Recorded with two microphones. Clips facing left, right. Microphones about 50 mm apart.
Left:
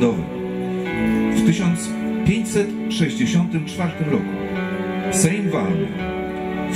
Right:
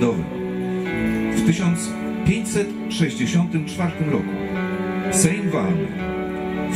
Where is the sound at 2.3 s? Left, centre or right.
Left.